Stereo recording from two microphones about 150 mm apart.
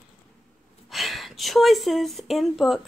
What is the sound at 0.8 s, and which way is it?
Speech, centre (ahead or behind).